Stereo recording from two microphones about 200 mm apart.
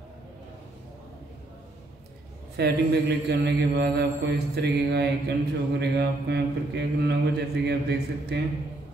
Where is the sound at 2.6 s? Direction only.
55° right (ahead or behind).